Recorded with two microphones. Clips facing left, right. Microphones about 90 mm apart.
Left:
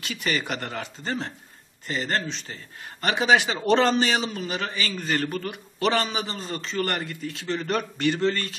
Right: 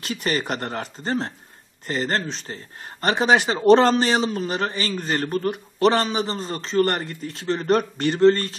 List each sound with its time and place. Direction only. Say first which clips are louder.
0.0 s a man's voice: right 3 dB; 40° right (ahead or behind)